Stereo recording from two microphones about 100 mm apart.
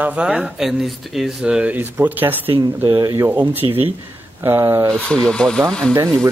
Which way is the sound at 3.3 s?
20° right (ahead or behind).